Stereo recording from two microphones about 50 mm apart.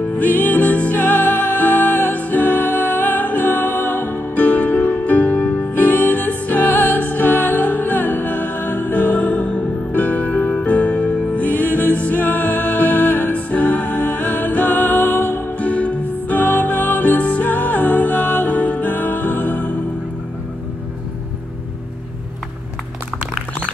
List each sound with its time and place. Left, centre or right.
0.2 s music: left